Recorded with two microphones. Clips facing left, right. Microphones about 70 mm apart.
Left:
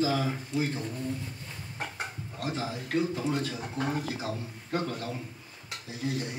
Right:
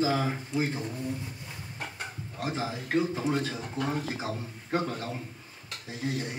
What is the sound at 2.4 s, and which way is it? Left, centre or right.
A man's voice, right.